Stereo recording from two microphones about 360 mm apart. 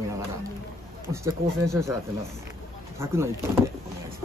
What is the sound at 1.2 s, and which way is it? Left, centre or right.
Speech, centre.